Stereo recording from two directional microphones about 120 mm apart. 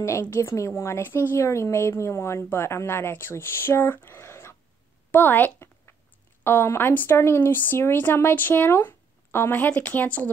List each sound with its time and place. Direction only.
0.0 s a woman's voice: 20° left (ahead or behind)
5.1 s a sound: 15° left (ahead or behind)
6.4 s speech: 20° left (ahead or behind)